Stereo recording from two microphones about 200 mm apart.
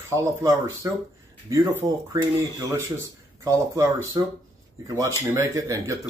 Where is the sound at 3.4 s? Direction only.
15° right (ahead or behind).